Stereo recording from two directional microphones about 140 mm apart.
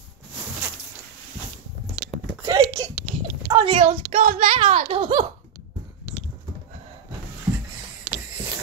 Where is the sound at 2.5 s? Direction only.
30° right (ahead or behind).